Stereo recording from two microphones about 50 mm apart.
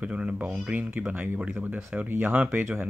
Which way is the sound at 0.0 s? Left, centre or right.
Right.